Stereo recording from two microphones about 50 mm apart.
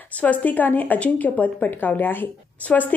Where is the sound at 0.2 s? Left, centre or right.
Left.